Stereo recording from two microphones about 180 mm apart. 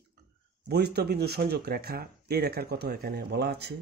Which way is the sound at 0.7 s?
65° right (ahead or behind).